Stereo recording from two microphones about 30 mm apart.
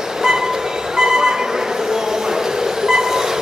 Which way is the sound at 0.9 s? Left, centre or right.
Right.